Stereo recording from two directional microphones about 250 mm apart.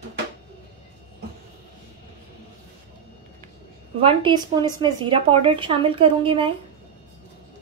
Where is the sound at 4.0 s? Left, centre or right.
Centre.